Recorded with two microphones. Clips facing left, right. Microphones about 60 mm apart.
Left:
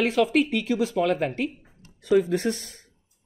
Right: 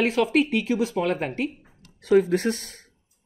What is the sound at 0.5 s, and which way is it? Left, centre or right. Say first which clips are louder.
Speech: even; centre.